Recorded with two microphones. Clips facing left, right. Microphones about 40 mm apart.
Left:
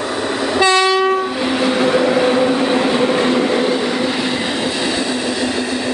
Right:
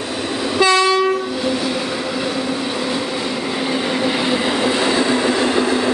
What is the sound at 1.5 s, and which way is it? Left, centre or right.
Train, left.